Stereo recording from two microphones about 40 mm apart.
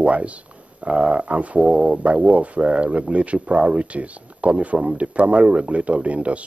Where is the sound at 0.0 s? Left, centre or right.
Right.